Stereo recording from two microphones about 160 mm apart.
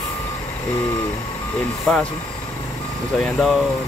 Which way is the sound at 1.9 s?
5° left (ahead or behind).